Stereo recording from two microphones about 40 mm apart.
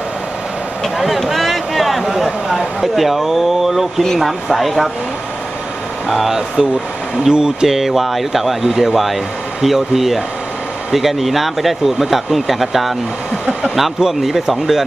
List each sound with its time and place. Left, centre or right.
0.8 s speech: centre
6.0 s speech: centre
7.7 s speech: centre
13.9 s speech: centre